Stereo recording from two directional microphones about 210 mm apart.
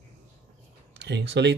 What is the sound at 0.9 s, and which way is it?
Speech, 55° right (ahead or behind).